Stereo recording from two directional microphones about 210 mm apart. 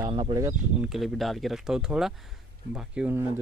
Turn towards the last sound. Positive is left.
turn(degrees=-5)  # may be behind; listen again after turning